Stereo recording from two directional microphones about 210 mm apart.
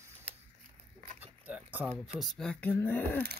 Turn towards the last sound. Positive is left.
turn(degrees=10)  # may be behind; listen again after turning